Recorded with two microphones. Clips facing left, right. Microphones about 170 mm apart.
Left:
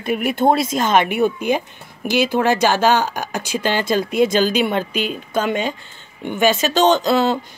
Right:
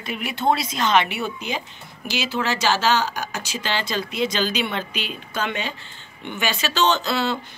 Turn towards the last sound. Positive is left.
turn(degrees=45)  # may be behind; listen again after turning